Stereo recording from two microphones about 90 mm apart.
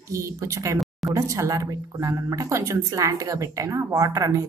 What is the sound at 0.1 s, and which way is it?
Speech, 35° right (ahead or behind).